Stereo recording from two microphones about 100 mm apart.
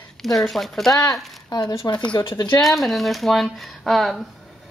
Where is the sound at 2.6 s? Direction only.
Centre (ahead or behind).